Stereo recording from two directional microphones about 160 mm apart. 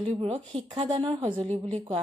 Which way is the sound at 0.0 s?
35° right (ahead or behind).